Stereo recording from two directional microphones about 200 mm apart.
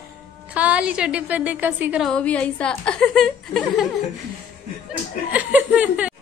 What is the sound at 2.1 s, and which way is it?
A woman's voice, 5° left (ahead or behind).